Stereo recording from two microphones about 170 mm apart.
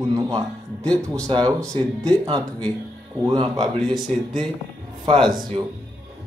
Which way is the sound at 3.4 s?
25° right (ahead or behind).